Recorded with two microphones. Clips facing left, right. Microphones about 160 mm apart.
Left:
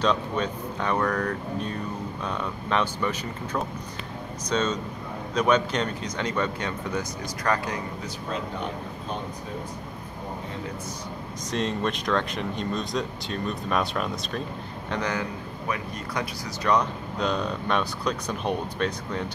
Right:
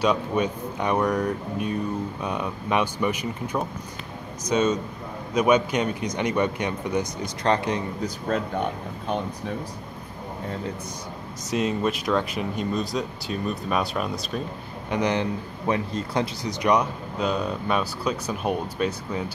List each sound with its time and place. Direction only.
0.0 s speech: 10° right (ahead or behind)
11.5 s speech: 5° right (ahead or behind)
14.9 s speech: 15° right (ahead or behind)
16.6 s speech: 10° right (ahead or behind)